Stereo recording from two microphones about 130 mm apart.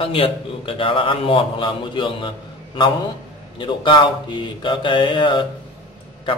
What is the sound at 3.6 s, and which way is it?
A man's voice, 35° left (ahead or behind).